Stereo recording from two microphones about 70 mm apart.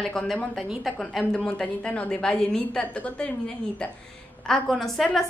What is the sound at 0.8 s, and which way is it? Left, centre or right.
Speech, centre.